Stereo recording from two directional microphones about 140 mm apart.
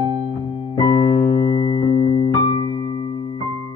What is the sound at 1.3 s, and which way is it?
Music, 30° left (ahead or behind).